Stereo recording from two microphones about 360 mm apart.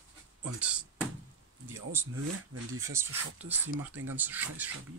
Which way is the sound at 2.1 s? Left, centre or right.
Right.